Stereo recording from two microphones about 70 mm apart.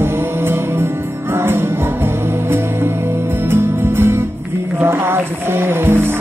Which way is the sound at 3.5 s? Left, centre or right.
Right.